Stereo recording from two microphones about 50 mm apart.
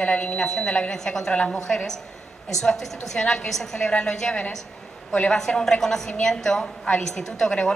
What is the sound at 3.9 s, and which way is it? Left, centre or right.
Speech, left.